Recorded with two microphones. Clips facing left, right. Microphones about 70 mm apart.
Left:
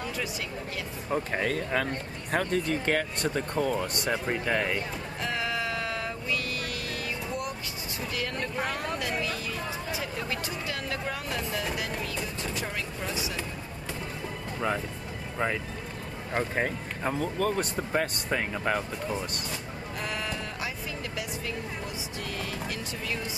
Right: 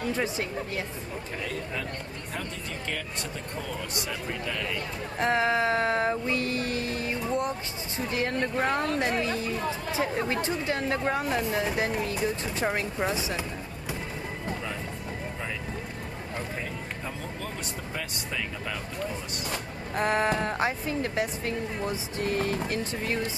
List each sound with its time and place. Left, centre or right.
1.3 s speech: left
5.2 s speech: right
16.3 s speech: left
20.0 s speech: right